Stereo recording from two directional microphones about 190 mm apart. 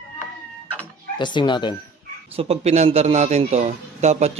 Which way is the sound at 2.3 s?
30° right (ahead or behind).